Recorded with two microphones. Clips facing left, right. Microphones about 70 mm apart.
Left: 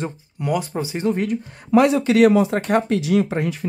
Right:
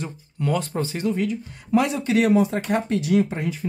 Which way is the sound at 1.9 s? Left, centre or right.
Left.